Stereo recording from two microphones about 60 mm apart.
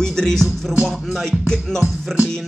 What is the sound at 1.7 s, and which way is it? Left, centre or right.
Speech, centre.